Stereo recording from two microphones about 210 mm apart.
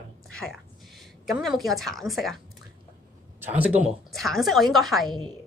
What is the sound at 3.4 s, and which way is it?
A woman's voice, 10° right (ahead or behind).